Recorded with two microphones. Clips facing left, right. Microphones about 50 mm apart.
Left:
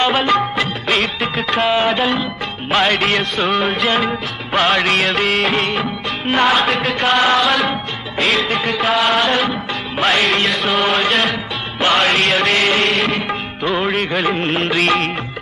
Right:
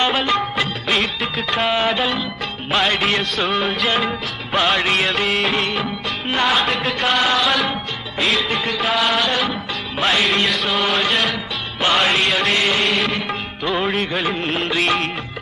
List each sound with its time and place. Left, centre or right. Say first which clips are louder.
0.1 s music: left 4 dB; centre
7.2 s music: left 5 dB; left
7.4 s music: left 3 dB; centre